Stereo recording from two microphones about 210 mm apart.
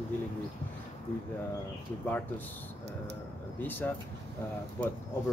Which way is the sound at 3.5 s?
10° left (ahead or behind).